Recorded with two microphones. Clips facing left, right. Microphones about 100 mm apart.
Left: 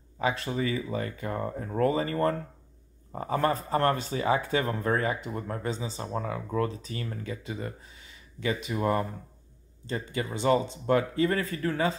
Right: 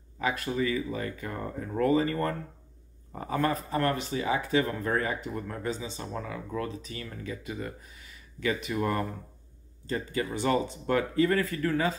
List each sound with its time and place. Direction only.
0.2 s speech: 30° left (ahead or behind)